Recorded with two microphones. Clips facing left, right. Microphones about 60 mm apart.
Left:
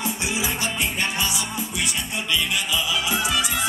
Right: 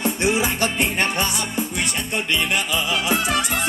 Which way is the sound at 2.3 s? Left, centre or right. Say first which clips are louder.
Right 1 dB; right.